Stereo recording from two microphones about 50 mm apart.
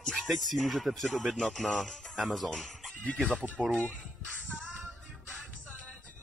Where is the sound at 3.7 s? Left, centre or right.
Left.